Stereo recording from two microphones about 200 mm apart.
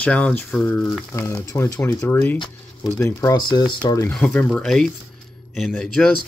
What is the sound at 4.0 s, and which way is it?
Speech, 10° left (ahead or behind).